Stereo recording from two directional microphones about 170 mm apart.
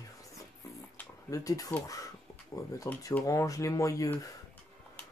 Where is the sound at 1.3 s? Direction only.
20° left (ahead or behind).